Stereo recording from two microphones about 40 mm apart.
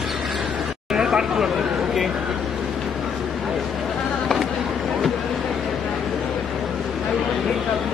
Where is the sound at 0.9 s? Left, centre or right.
Centre.